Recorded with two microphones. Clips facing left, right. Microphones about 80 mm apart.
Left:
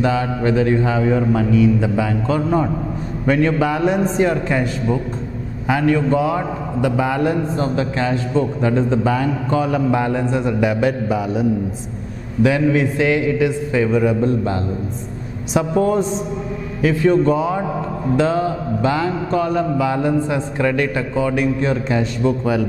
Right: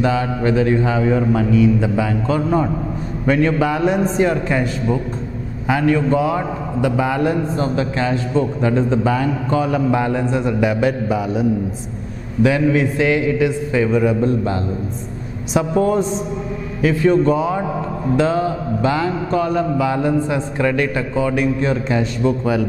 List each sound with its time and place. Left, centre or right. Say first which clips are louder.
0.0 s a man's voice: even; centre
12.4 s a man's voice: even; centre